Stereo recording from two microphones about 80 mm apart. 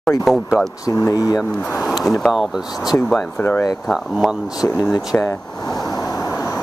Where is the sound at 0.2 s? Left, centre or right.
Centre.